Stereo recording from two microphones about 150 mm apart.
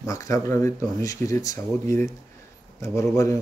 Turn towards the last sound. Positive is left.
turn(degrees=20)  # may be behind; listen again after turning